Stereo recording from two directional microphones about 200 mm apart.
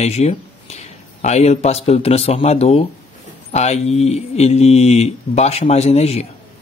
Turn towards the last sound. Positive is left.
turn(degrees=30)  # may be behind; listen again after turning